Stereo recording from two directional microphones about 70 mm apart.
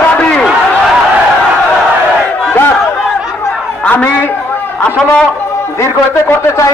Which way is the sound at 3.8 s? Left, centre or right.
Left.